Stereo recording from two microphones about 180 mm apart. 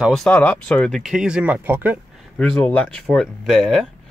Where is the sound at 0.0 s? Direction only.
Centre (ahead or behind).